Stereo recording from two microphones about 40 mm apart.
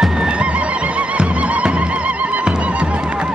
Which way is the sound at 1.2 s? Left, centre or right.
Right.